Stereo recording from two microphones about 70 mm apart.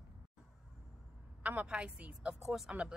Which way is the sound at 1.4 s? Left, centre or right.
Right.